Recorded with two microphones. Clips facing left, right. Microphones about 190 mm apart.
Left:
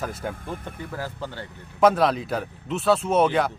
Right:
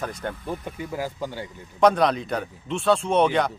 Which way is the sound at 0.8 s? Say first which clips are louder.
Right 4 dB; 15° right (ahead or behind).